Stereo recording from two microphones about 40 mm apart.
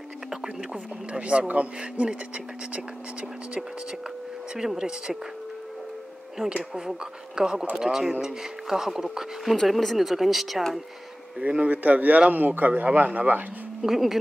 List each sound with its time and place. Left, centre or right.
0.3 s speech: centre
1.1 s speech: right
4.6 s speech: centre
7.3 s speech: centre
9.7 s speech: centre
9.9 s speech: centre
11.3 s a man's voice: right
13.8 s speech: centre